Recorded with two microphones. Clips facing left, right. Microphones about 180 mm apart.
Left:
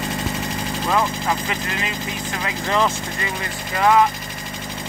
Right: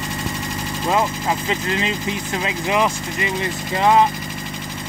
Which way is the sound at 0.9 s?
25° right (ahead or behind).